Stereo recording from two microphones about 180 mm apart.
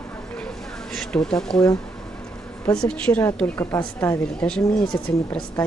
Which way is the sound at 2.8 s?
5° left (ahead or behind).